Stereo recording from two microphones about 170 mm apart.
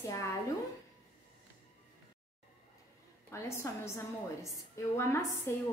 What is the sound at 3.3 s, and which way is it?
A woman's voice, 15° left (ahead or behind).